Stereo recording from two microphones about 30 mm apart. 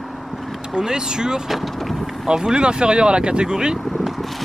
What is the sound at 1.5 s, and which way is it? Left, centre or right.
Vehicle, centre.